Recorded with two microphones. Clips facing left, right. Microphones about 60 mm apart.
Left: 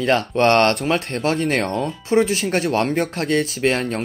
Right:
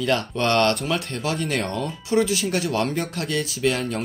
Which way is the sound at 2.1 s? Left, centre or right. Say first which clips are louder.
Left 3 dB; left.